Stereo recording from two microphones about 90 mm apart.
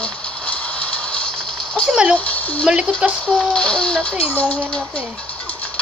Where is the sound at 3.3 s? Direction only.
10° left (ahead or behind).